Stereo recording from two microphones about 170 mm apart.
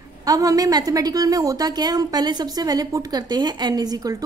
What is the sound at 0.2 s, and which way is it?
A woman's voice, 20° right (ahead or behind).